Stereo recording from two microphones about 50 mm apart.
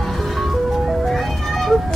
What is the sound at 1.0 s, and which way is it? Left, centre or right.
Music, centre.